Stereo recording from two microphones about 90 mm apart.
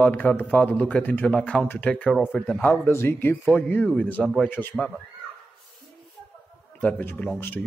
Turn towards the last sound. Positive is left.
turn(degrees=25)  # may be behind; listen again after turning